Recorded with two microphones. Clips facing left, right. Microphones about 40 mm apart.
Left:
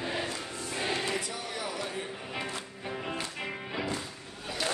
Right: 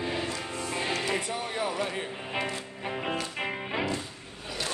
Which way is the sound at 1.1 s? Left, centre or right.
Right.